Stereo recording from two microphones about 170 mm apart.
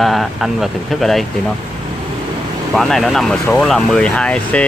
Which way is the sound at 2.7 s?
Centre (ahead or behind).